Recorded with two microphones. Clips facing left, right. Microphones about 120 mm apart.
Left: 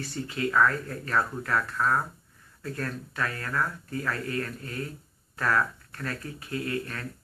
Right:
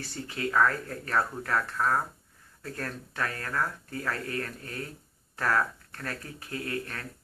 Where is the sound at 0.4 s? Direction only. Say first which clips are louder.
Left 1 dB; 30° right (ahead or behind).